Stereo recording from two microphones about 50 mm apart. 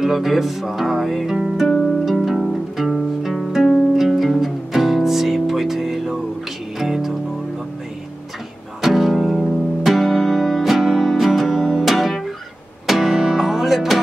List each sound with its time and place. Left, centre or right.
0.0 s music: centre
1.7 s harp: centre
2.0 s music: centre
8.8 s music: centre